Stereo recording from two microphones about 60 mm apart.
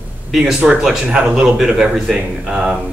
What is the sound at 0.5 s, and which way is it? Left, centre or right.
Speech, centre.